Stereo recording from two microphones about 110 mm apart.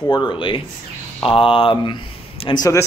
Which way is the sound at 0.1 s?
45° left (ahead or behind).